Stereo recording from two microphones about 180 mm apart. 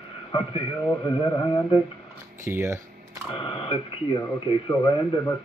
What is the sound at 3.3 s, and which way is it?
A man's voice, 30° left (ahead or behind).